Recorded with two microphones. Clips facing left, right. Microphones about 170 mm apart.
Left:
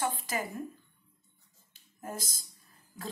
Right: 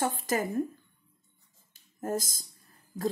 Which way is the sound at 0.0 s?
45° right (ahead or behind).